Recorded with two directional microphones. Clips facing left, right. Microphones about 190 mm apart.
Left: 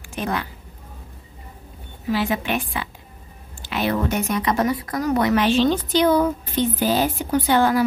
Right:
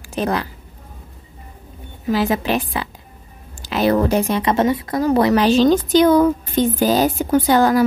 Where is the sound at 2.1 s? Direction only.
40° right (ahead or behind).